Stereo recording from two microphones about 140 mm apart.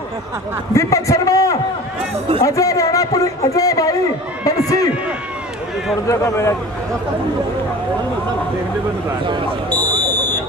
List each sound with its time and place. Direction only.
0.7 s a man's voice: 20° left (ahead or behind)
4.5 s run: 25° left (ahead or behind)
6.0 s a man's voice: 20° left (ahead or behind)
9.7 s a sound: 15° left (ahead or behind)